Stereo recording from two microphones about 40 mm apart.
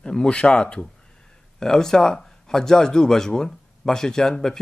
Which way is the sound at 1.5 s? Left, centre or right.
Centre.